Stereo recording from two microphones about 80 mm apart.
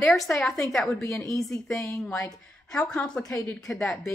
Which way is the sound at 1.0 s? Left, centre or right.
Left.